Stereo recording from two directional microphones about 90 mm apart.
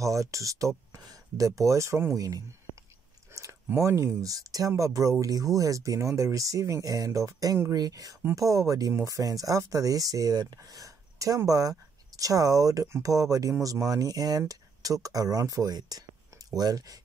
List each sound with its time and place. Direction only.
0.0 s speech: 35° right (ahead or behind)
2.1 s speech: 40° right (ahead or behind)
3.3 s a sound: 30° right (ahead or behind)
3.6 s speech: 35° right (ahead or behind)